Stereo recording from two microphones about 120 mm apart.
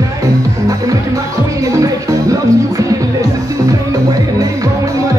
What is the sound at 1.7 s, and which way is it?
Music, 30° right (ahead or behind).